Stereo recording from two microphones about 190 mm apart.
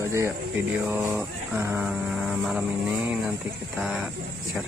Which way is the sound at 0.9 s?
10° right (ahead or behind).